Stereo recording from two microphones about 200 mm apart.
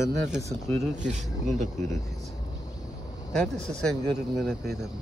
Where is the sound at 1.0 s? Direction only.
35° right (ahead or behind).